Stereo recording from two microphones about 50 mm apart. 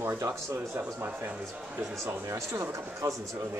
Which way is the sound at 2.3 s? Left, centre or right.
Right.